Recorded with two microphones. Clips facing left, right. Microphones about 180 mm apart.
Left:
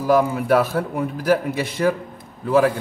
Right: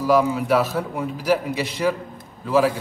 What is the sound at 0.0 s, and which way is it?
A man's voice, 50° left (ahead or behind).